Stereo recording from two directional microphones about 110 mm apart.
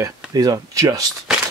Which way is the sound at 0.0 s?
35° right (ahead or behind).